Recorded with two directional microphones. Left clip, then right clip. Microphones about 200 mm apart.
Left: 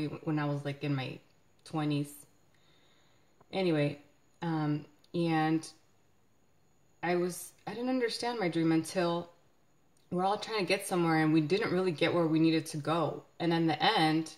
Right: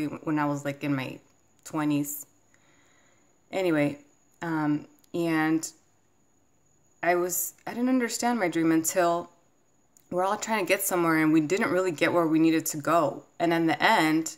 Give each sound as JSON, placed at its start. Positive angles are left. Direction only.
{"t": 0.0, "sound": "speech", "side_deg": -20}
{"t": 3.5, "sound": "speech", "side_deg": -20}
{"t": 7.0, "sound": "speech", "side_deg": -20}